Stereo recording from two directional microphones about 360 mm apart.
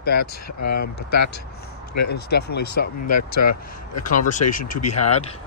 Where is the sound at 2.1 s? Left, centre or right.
Left.